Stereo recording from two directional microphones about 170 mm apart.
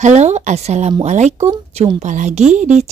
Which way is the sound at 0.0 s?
40° right (ahead or behind).